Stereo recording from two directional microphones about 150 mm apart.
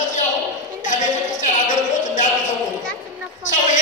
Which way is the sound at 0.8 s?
55° left (ahead or behind).